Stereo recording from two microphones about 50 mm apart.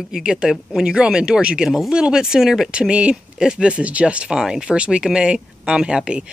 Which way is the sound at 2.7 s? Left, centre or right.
Centre.